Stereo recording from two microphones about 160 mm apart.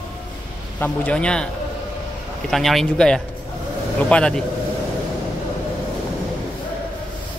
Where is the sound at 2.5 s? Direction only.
Centre (ahead or behind).